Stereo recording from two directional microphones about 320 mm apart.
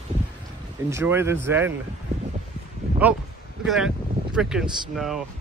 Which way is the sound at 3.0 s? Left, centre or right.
Centre.